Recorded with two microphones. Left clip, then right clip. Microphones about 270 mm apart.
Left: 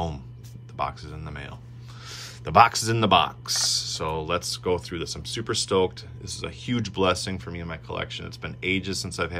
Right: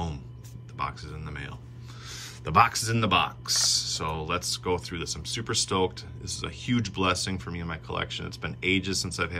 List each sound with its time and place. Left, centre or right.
0.7 s speech: centre